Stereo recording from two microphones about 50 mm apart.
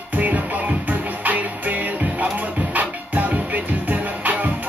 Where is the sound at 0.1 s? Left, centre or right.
Right.